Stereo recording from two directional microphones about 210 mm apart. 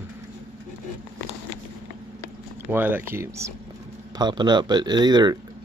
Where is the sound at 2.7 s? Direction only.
10° right (ahead or behind).